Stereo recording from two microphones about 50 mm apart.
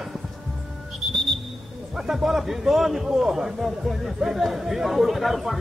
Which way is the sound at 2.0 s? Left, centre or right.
Centre.